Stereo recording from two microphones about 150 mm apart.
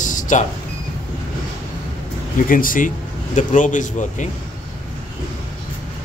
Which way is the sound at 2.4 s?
65° left (ahead or behind).